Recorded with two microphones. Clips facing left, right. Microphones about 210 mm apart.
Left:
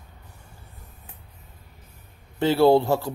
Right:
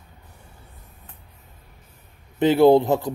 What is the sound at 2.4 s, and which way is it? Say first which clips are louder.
Speech: right 3 dB; 20° right (ahead or behind).